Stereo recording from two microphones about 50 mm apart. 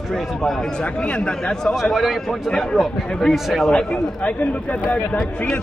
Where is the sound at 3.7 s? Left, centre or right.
Left.